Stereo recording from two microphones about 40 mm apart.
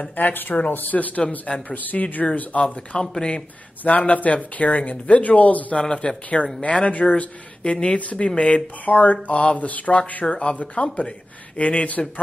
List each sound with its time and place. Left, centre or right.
0.1 s speech: left
2.6 s speech: left
3.8 s speech: left
5.8 s speech: left
8.8 s speech: left
10.3 s speech: left